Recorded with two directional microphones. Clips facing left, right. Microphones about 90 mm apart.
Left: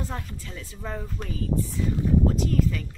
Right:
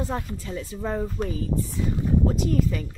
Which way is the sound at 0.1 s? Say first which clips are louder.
Right 6 dB; 20° right (ahead or behind).